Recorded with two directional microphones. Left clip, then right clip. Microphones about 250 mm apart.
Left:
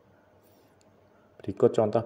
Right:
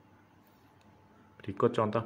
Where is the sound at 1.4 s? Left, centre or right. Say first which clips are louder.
Left 5 dB; centre.